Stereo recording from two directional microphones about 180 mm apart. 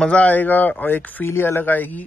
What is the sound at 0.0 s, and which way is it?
Speech, 10° left (ahead or behind).